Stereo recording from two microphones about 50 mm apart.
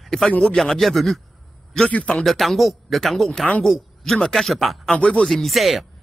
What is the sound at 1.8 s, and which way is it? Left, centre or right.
Speech, left.